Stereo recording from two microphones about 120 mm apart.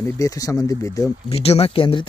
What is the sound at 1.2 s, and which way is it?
Speech, 55° left (ahead or behind).